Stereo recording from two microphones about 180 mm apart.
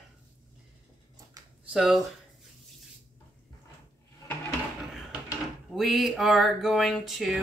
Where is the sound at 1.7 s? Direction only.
5° right (ahead or behind).